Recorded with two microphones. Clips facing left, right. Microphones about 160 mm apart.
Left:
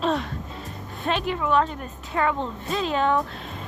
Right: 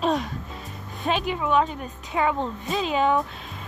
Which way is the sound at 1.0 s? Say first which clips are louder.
Even; 5° right (ahead or behind).